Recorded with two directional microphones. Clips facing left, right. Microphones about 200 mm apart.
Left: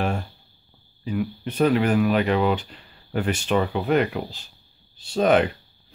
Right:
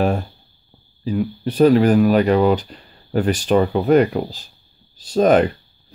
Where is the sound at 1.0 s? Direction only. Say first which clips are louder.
Right 5 dB; 35° right (ahead or behind).